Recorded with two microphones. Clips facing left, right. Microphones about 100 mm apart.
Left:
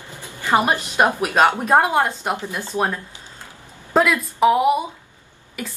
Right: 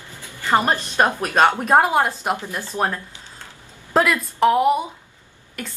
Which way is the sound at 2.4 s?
20° left (ahead or behind).